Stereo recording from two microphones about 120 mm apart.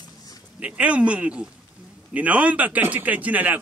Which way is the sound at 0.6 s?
10° right (ahead or behind).